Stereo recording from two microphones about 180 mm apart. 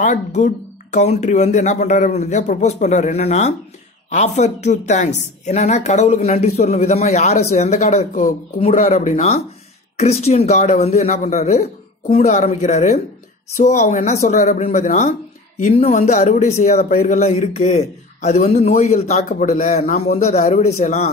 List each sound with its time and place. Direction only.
0.0 s a man's voice: 40° left (ahead or behind)